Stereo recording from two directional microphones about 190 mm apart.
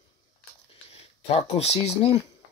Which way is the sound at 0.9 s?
35° left (ahead or behind).